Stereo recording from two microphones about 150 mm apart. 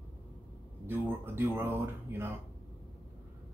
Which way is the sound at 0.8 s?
15° right (ahead or behind).